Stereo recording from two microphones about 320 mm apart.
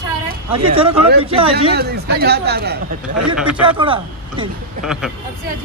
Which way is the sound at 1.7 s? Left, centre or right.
Right.